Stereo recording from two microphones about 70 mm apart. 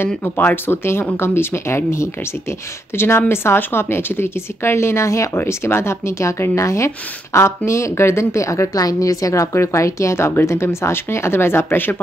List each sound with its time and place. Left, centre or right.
0.7 s a woman's voice: left